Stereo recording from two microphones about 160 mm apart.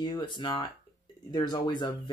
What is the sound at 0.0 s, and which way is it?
Speech, 25° left (ahead or behind).